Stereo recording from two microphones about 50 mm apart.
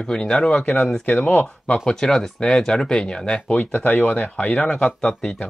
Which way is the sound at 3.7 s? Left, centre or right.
Left.